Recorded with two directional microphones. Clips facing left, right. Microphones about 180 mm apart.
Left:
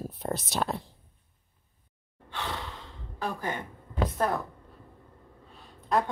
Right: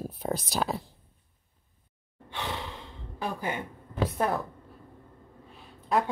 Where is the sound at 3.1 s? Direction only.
15° right (ahead or behind).